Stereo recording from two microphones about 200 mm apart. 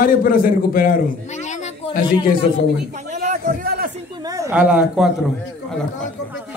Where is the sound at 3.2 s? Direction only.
45° right (ahead or behind).